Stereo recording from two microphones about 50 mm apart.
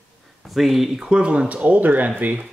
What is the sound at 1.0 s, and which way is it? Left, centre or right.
Speech, centre.